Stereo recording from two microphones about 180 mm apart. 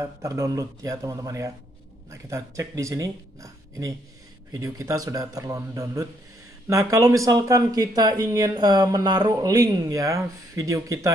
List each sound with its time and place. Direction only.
0.0 s speech: 20° right (ahead or behind)